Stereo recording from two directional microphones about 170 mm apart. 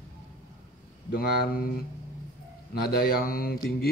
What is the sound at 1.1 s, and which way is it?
Speech, 60° left (ahead or behind).